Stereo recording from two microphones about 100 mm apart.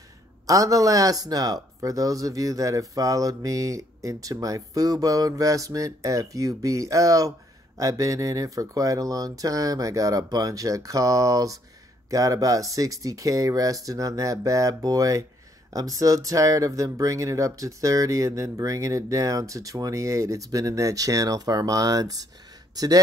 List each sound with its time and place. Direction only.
0.5 s speech: 35° right (ahead or behind)